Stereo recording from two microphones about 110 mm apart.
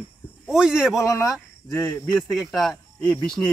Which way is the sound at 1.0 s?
30° left (ahead or behind).